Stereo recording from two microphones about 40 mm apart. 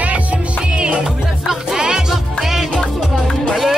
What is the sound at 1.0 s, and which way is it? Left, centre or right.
Music, centre.